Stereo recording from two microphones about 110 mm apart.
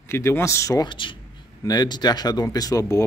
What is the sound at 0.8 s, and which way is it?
Speech, 45° left (ahead or behind).